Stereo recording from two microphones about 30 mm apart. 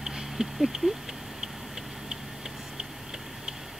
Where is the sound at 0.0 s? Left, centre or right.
Centre.